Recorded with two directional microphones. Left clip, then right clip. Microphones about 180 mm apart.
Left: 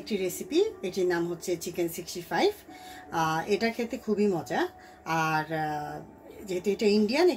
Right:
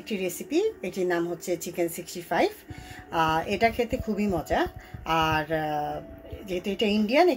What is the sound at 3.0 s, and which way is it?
A woman's voice, centre (ahead or behind).